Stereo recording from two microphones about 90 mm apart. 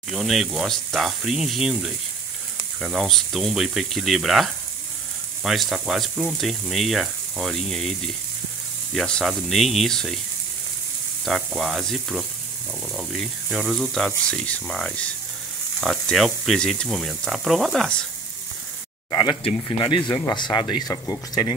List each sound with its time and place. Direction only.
0.1 s speech: 5° right (ahead or behind)
8.9 s speech: 5° left (ahead or behind)
11.2 s speech: centre (ahead or behind)
19.8 s speech: 55° left (ahead or behind)